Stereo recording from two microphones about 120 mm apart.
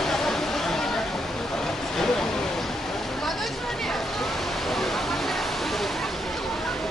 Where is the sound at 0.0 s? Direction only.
5° left (ahead or behind).